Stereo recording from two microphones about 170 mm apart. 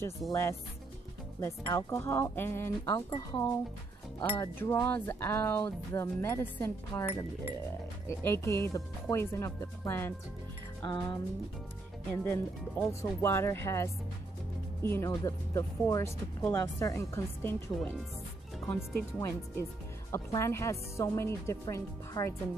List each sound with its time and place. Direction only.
0.3 s speech: 15° left (ahead or behind)
1.9 s speech: 15° left (ahead or behind)
4.4 s speech: 15° left (ahead or behind)
12.2 s speech: 10° left (ahead or behind)
18.7 s speech: 10° left (ahead or behind)